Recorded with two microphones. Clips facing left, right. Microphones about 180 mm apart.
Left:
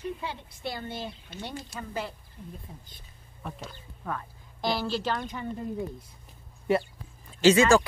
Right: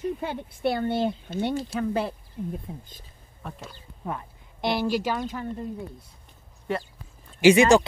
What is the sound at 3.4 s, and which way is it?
Speech, centre (ahead or behind).